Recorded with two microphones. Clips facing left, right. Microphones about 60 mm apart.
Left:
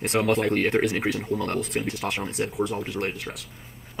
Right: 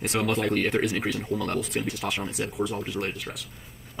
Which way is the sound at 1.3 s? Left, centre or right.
Left.